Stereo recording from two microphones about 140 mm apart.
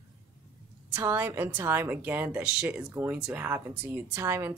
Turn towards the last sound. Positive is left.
turn(degrees=-20)  # may be behind; listen again after turning